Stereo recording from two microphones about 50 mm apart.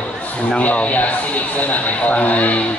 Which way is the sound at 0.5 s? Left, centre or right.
Left.